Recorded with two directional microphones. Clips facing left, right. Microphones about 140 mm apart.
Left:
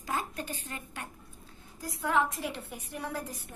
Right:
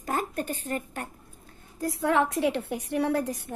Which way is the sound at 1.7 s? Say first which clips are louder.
Right 5 dB; 60° right (ahead or behind).